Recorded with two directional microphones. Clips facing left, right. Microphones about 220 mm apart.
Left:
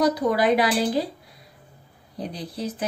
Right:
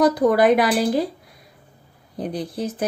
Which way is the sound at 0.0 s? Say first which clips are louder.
Right 5 dB; 50° right (ahead or behind).